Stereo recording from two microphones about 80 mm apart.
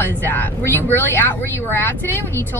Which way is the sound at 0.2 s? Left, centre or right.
Left.